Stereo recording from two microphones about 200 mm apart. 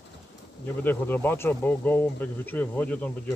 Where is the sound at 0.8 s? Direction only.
10° left (ahead or behind).